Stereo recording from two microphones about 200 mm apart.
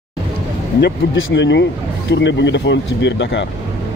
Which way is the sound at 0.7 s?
60° left (ahead or behind).